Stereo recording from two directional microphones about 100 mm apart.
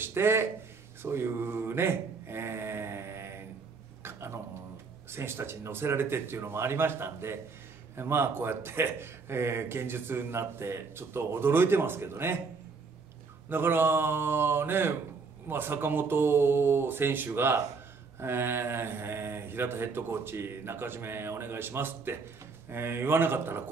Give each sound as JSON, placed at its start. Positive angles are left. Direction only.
{"t": 0.0, "sound": "speech", "side_deg": -25}
{"t": 1.0, "sound": "mantra", "side_deg": -25}
{"t": 4.0, "sound": "a sound", "side_deg": -25}
{"t": 5.1, "sound": "speech", "side_deg": -25}
{"t": 13.5, "sound": "speech", "side_deg": -20}